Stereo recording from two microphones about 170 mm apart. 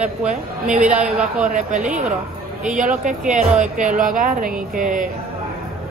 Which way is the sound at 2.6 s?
50° right (ahead or behind).